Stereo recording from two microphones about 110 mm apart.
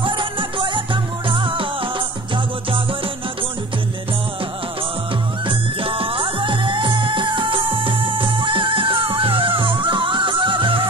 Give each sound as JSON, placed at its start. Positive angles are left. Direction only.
{"t": 0.0, "sound": "music", "side_deg": -50}
{"t": 5.5, "sound": "music", "side_deg": -55}